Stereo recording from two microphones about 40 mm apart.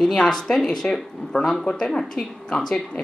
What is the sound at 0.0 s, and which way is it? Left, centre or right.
Speech, centre.